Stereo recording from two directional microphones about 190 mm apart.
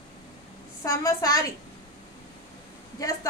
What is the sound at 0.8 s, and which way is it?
Speech, 15° left (ahead or behind).